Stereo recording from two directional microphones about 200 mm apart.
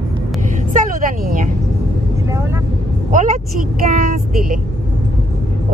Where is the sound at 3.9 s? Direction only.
50° right (ahead or behind).